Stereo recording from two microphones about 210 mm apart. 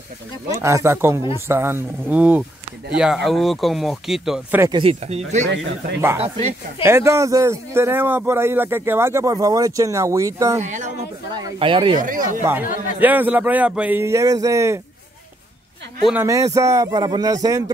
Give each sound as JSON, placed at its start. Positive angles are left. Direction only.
{"t": 0.5, "sound": "speech", "side_deg": -15}
{"t": 4.6, "sound": "speech", "side_deg": -20}
{"t": 5.9, "sound": "speech", "side_deg": -10}
{"t": 10.6, "sound": "speech", "side_deg": -35}
{"t": 11.3, "sound": "speech", "side_deg": -20}
{"t": 12.0, "sound": "speech", "side_deg": -40}
{"t": 13.0, "sound": "speech", "side_deg": -10}
{"t": 16.1, "sound": "speech", "side_deg": -10}